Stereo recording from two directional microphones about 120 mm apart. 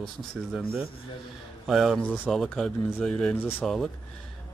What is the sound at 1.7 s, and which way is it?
A man's voice, centre (ahead or behind).